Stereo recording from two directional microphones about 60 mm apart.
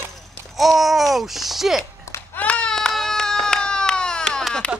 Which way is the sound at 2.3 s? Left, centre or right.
Centre.